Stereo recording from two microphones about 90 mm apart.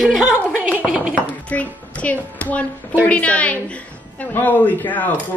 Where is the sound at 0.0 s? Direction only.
Centre (ahead or behind).